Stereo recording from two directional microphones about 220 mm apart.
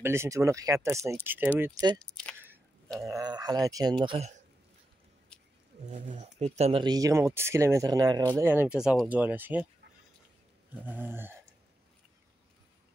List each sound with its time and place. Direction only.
0.0 s speech: 10° right (ahead or behind)
2.0 s speech: 5° left (ahead or behind)
3.1 s speech: 15° right (ahead or behind)
5.9 s speech: 30° right (ahead or behind); by 9.7 s 5° right (ahead or behind)
10.7 s speech: 10° right (ahead or behind)